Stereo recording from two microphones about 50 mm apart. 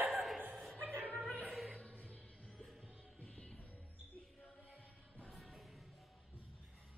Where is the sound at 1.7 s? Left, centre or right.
Left.